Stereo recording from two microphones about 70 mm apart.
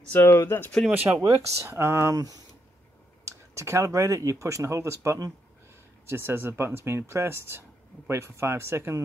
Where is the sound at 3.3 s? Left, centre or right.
Right.